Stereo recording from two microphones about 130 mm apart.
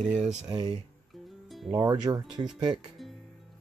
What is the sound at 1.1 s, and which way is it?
Music, centre (ahead or behind).